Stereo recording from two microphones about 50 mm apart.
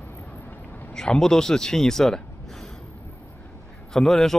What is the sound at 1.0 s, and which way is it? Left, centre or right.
Speech, centre.